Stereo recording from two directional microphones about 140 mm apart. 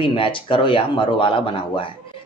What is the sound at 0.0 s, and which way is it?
Speech, 40° left (ahead or behind).